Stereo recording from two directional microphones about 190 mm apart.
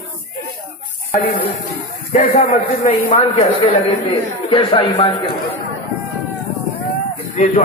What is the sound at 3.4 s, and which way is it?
A man's voice, 25° left (ahead or behind).